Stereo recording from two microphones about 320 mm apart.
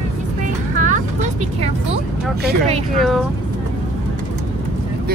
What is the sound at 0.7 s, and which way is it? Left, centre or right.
Vehicle, right.